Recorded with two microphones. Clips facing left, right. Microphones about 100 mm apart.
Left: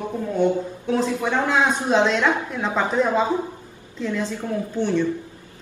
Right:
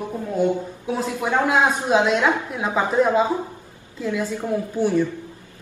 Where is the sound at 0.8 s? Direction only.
10° right (ahead or behind).